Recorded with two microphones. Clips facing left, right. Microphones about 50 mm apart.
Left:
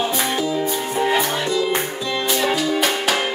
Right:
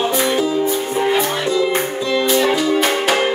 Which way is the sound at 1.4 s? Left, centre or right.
Right.